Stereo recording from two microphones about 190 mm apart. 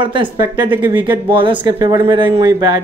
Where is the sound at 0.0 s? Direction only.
25° right (ahead or behind).